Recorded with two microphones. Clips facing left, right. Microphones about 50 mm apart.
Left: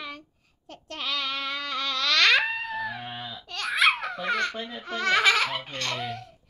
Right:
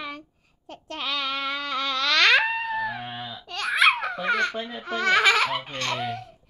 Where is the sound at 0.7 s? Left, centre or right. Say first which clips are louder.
Right 2 dB; centre.